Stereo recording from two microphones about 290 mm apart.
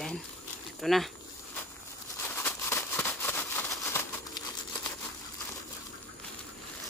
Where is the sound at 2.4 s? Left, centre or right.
Centre.